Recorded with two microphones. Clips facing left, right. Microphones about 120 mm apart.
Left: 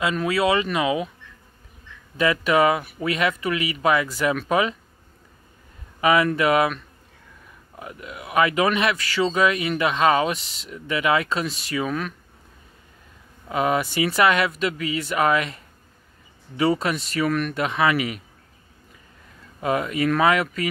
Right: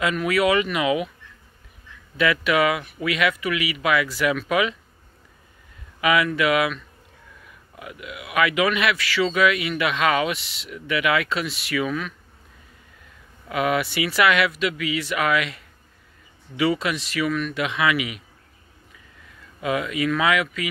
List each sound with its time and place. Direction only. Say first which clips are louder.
0.0 s speech: right 1 dB; 30° left (ahead or behind)
2.1 s speech: left 1 dB; 35° left (ahead or behind)
5.9 s speech: left 2 dB; 35° left (ahead or behind)
13.5 s speech: left 1 dB; 35° left (ahead or behind)
19.6 s speech: left 1 dB; 40° left (ahead or behind)